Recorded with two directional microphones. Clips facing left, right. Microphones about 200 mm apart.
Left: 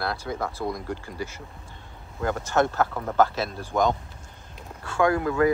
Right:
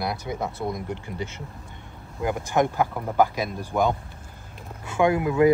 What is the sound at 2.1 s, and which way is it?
Speech, 15° right (ahead or behind).